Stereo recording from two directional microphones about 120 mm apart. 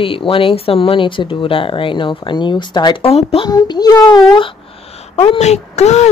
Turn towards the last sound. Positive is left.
turn(degrees=65)  # may be behind; listen again after turning